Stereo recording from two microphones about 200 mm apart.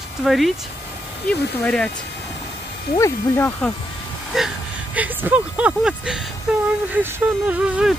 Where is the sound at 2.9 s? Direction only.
15° left (ahead or behind).